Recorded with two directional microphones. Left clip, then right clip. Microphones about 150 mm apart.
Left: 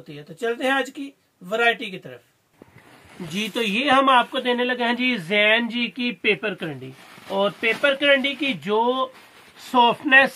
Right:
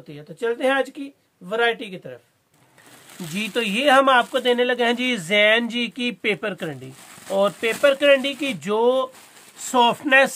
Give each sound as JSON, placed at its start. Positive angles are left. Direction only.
{"t": 0.6, "sound": "speech", "side_deg": -45}
{"t": 3.3, "sound": "speech", "side_deg": -15}
{"t": 7.2, "sound": "speech", "side_deg": -5}